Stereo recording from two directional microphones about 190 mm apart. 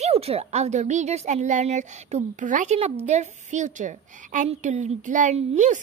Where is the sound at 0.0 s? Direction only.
30° right (ahead or behind).